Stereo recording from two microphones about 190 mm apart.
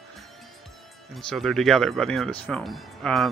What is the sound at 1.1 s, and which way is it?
Speech, centre (ahead or behind).